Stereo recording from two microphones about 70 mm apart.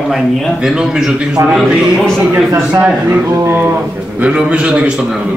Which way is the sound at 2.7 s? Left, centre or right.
Right.